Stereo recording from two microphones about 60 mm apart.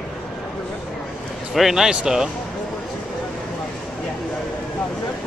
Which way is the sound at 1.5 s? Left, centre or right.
Centre.